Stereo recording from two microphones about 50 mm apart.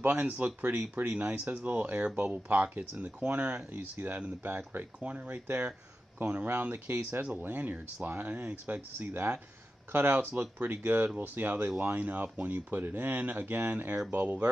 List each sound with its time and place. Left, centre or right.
0.0 s speech: right
3.7 s speech: right
8.9 s speech: right